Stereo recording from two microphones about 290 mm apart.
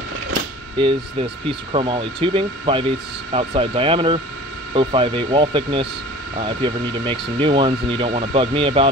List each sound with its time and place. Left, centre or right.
0.7 s speech: centre